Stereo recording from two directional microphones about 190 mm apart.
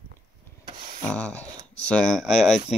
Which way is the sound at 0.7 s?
35° right (ahead or behind).